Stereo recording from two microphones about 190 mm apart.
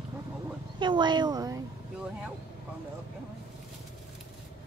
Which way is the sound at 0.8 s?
25° right (ahead or behind).